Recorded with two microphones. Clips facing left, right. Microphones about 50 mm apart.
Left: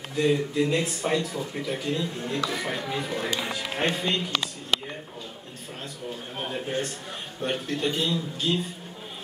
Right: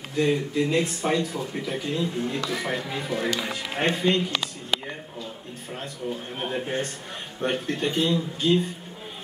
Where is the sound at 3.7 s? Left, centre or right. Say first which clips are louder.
Right 4 dB; right.